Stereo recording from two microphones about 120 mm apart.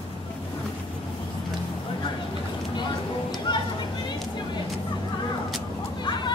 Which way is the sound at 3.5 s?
40° left (ahead or behind).